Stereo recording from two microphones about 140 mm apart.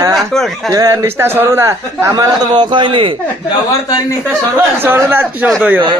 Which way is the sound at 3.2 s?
25° left (ahead or behind).